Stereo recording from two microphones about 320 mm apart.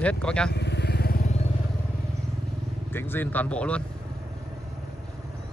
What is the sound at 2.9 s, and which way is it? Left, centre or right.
Speech, centre.